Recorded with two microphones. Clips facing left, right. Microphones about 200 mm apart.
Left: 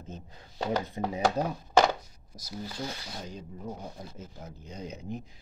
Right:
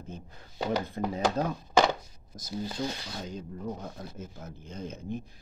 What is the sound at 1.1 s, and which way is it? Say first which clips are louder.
Speech: left 1 dB; 15° left (ahead or behind).